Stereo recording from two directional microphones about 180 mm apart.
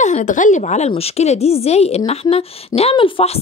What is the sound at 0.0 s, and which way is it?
A woman's voice, 45° left (ahead or behind).